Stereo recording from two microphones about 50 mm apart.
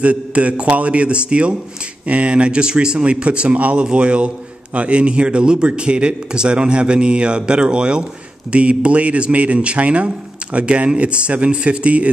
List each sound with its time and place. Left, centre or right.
0.0 s a man's voice: right